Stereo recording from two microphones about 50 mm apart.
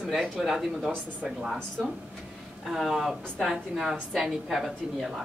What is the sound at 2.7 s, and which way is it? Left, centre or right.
A woman's voice, centre.